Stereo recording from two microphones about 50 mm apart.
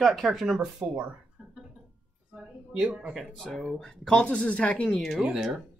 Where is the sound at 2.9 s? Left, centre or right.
Right.